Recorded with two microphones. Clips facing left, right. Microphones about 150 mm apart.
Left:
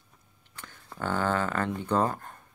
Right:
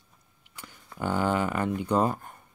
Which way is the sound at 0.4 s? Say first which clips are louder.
Even; 10° right (ahead or behind).